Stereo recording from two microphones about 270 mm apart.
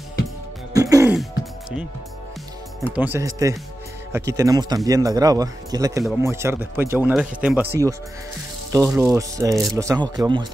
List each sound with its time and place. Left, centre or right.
0.7 s music: centre
2.9 s speech: centre